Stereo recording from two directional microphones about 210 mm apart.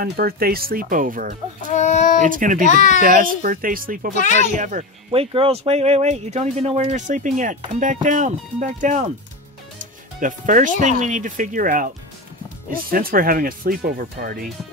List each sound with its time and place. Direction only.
0.0 s speech: 45° right (ahead or behind)
1.7 s a sound: 35° left (ahead or behind)
2.2 s speech: 40° right (ahead or behind)
2.6 s speech: 35° left (ahead or behind)
3.0 s speech: 40° right (ahead or behind)
10.2 s speech: 40° right (ahead or behind)
12.9 s speech: 45° right (ahead or behind)